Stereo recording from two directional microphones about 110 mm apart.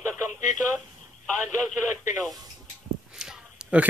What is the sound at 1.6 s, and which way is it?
Speech, 5° left (ahead or behind).